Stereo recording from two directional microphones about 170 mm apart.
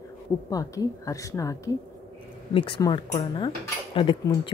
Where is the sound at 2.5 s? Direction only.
30° left (ahead or behind).